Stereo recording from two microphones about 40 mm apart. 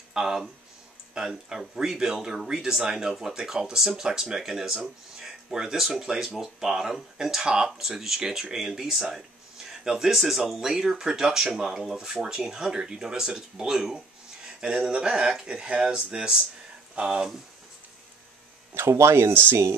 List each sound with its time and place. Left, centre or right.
0.1 s speech: centre
18.8 s speech: right